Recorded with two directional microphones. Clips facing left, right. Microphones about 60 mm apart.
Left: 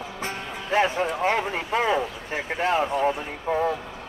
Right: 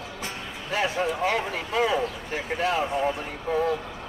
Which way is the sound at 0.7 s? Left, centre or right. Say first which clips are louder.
Left 3 dB; left.